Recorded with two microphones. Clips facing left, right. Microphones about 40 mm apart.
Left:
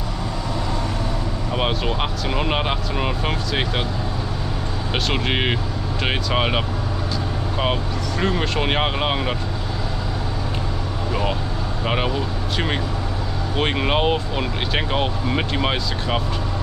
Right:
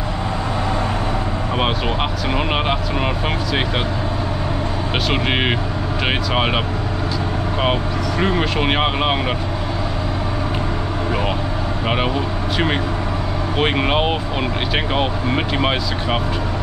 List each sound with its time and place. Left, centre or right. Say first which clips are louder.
1.5 s speech: right 1 dB; centre
4.9 s speech: right 2 dB; centre
7.6 s speech: right 3 dB; centre
11.8 s speech: right 2 dB; centre